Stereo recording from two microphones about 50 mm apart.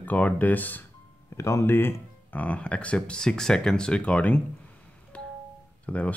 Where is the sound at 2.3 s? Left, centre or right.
Left.